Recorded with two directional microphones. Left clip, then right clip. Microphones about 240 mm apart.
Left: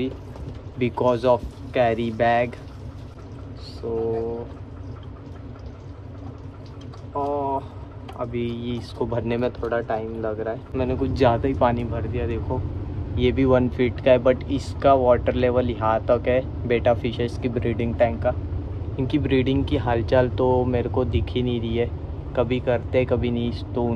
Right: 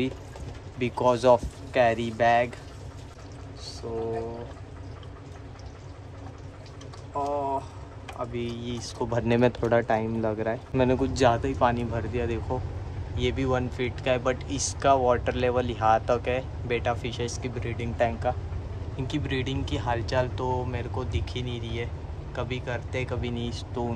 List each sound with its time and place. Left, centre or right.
0.7 s speech: centre
7.2 s a sound: centre
8.2 s speech: centre
13.1 s speech: centre
17.9 s speech: centre